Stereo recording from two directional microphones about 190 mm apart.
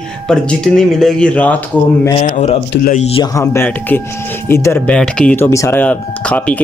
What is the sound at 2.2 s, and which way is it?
Speech, 40° left (ahead or behind).